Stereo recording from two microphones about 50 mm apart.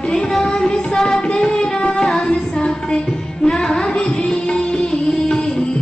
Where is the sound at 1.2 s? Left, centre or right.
Centre.